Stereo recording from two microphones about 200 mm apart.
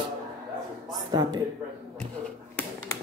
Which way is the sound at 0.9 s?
20° right (ahead or behind).